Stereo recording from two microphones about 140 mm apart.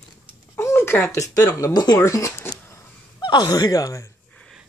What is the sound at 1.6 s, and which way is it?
Speech, 30° left (ahead or behind).